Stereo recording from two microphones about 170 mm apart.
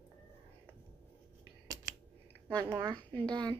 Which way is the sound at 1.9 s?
20° right (ahead or behind).